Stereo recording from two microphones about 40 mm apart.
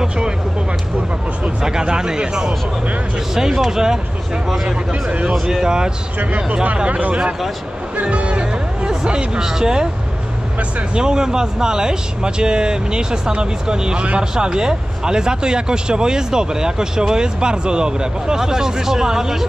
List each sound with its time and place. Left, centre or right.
1.6 s speech: centre
5.3 s speech: centre
6.1 s speech: right; by 9.8 s centre
11.0 s speech: centre